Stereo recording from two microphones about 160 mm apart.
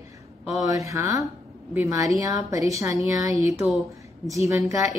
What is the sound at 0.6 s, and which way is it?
A woman's voice, 20° right (ahead or behind).